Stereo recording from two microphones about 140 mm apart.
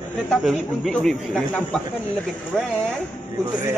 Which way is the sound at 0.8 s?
5° left (ahead or behind).